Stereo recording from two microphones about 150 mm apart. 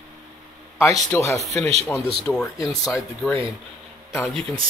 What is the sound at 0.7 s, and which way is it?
A man's voice, 20° left (ahead or behind).